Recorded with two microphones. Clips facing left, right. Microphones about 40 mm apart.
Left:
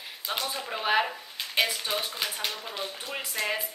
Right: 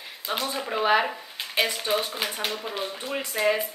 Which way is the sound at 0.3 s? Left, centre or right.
Centre.